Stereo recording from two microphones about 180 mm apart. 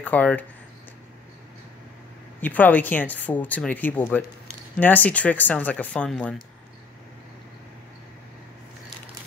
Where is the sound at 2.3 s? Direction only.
10° left (ahead or behind).